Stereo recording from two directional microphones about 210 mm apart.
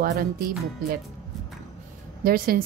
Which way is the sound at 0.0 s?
45° right (ahead or behind).